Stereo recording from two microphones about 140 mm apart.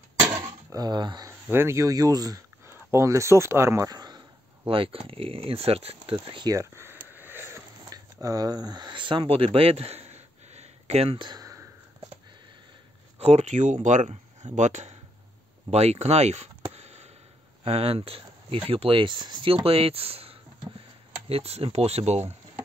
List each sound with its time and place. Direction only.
0.7 s speech: 30° right (ahead or behind)
1.5 s speech: 15° right (ahead or behind)
4.6 s speech: 40° right (ahead or behind)
11.2 s a sound: 25° right (ahead or behind)
13.2 s speech: 50° right (ahead or behind)
15.7 s a sound: 50° right (ahead or behind)
17.6 s speech: 45° right (ahead or behind)